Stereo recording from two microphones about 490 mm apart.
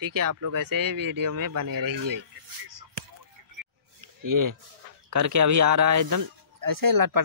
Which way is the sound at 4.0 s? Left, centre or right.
Right.